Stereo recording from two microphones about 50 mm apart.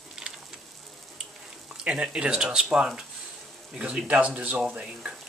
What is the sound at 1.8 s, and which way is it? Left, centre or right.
Speech, right.